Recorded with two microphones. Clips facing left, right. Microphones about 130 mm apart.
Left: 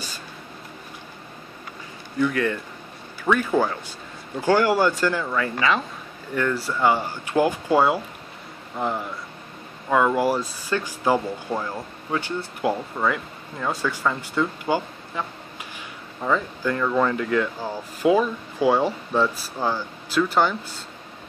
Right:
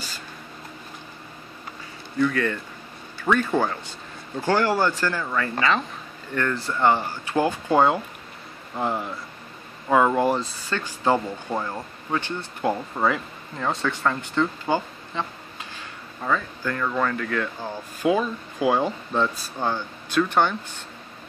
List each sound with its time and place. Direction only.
2.1 s speech: 15° left (ahead or behind)
8.7 s speech: 5° right (ahead or behind); by 10.4 s 20° right (ahead or behind)
10.4 s speech: 10° left (ahead or behind)
12.9 s speech: 5° right (ahead or behind)
15.7 s a sound: 10° left (ahead or behind)
16.8 s speech: 15° left (ahead or behind)